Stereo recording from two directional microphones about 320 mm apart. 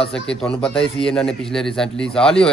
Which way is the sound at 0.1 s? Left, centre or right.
Centre.